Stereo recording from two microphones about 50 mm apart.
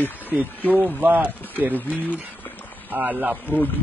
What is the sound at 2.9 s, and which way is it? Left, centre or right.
Speech, right.